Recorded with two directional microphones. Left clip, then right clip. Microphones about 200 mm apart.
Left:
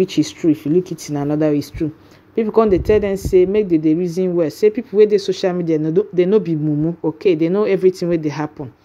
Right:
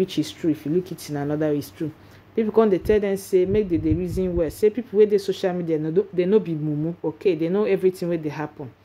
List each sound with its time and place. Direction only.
0.0 s speech: 20° left (ahead or behind)